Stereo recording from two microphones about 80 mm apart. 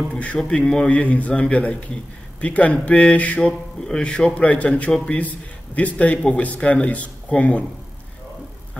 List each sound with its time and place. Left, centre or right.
0.1 s a man's voice: centre